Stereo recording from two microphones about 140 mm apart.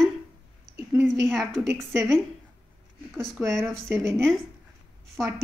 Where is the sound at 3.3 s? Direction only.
20° right (ahead or behind).